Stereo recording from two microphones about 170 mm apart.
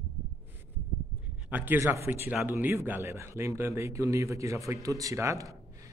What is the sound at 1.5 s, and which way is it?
A man's voice, 10° right (ahead or behind).